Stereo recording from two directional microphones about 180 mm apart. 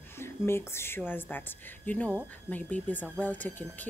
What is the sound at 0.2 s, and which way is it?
Speech, 15° left (ahead or behind).